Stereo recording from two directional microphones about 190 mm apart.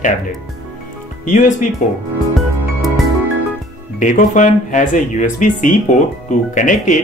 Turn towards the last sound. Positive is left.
turn(degrees=40)  # may be behind; listen again after turning